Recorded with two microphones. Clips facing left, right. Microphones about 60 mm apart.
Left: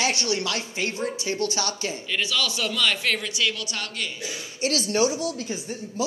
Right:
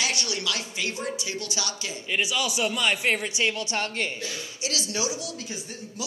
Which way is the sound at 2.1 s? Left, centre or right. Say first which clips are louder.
Right 1 dB; centre.